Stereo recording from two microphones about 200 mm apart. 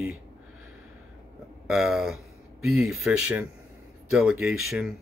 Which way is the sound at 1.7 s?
Centre (ahead or behind).